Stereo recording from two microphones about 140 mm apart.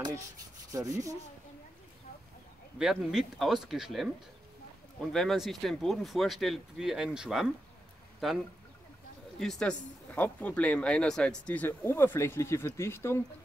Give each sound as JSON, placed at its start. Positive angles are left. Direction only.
{"t": 0.7, "sound": "rub", "side_deg": -25}
{"t": 2.8, "sound": "speech", "side_deg": 0}
{"t": 5.1, "sound": "speech", "side_deg": 0}
{"t": 9.4, "sound": "speech", "side_deg": 5}